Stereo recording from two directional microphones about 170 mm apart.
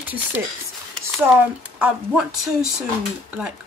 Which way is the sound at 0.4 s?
10° right (ahead or behind).